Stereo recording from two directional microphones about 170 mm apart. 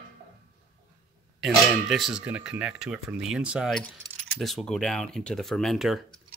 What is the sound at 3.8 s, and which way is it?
Keys jangling, 45° right (ahead or behind).